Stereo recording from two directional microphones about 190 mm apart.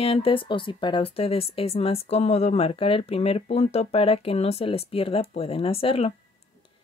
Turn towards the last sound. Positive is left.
turn(degrees=30)  # may be behind; listen again after turning